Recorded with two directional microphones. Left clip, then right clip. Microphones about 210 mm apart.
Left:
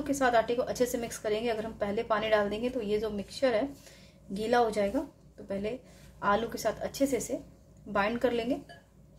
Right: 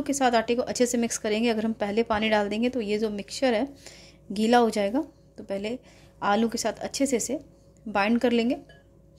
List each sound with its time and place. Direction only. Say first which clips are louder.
0.0 s a woman's voice: right 3 dB; 40° right (ahead or behind)